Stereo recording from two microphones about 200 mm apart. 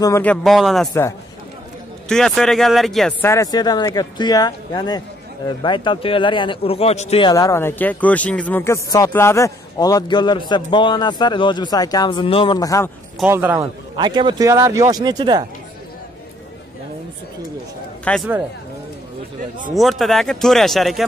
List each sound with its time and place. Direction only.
0.0 s speech: 10° left (ahead or behind)
2.0 s speech: centre (ahead or behind)
13.2 s a man's voice: 10° right (ahead or behind)
13.9 s speech: 25° right (ahead or behind)
18.0 s speech: 5° left (ahead or behind)
19.7 s speech: centre (ahead or behind)